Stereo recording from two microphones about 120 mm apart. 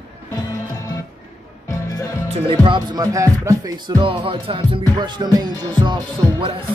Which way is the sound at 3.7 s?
45° right (ahead or behind).